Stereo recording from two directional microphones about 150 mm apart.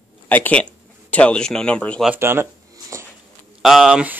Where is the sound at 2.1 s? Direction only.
15° right (ahead or behind).